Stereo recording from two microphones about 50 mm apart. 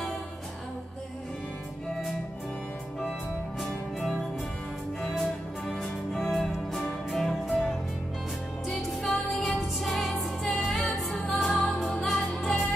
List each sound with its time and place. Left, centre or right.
5.7 s music: centre